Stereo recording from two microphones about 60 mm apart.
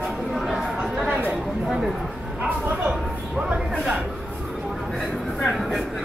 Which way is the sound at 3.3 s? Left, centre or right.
Centre.